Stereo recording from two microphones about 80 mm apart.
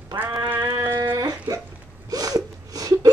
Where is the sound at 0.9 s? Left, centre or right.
Right.